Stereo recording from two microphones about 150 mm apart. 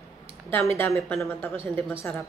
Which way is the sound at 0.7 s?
15° left (ahead or behind).